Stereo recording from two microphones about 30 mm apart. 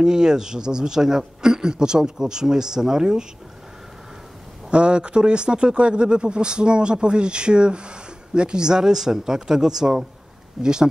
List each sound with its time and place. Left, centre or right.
0.0 s a man's voice: right
4.6 s a man's voice: right